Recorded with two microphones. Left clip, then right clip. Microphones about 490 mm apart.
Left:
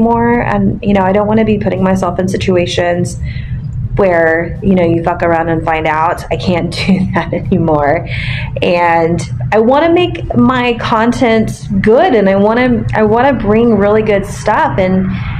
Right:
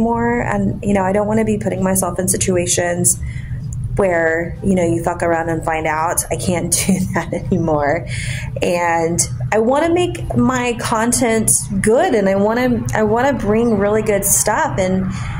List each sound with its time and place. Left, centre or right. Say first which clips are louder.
0.0 s a woman's voice: left 6 dB; right